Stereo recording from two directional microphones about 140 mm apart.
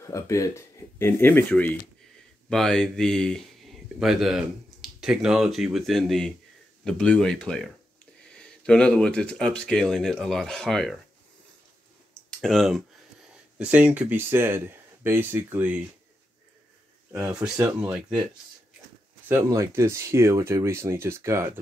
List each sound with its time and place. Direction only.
0.0 s speech: 20° left (ahead or behind); by 11.0 s centre (ahead or behind)
12.3 s speech: centre (ahead or behind)
17.1 s speech: 25° right (ahead or behind)
19.2 s speech: 20° right (ahead or behind)